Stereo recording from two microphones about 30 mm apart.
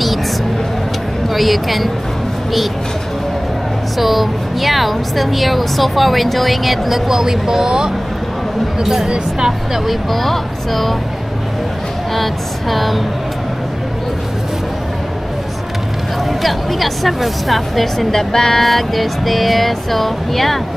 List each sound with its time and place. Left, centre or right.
1.3 s speech: centre
4.0 s speech: centre
7.1 s speech: centre
9.8 s speech: centre
12.2 s speech: centre
16.3 s speech: centre
18.1 s music: centre
18.6 s speech: centre